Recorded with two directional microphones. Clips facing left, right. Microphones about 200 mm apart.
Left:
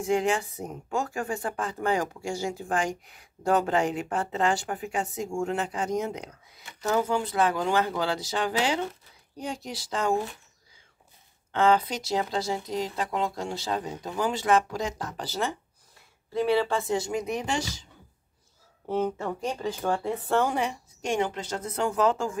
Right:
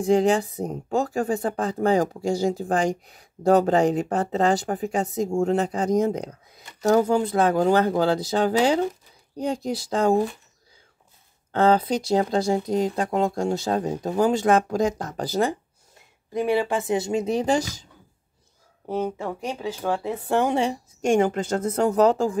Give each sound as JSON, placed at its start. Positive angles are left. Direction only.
{"t": 0.0, "sound": "speech", "side_deg": -35}
{"t": 11.5, "sound": "speech", "side_deg": -35}
{"t": 16.3, "sound": "speech", "side_deg": -15}
{"t": 18.9, "sound": "speech", "side_deg": -10}
{"t": 21.0, "sound": "speech", "side_deg": -50}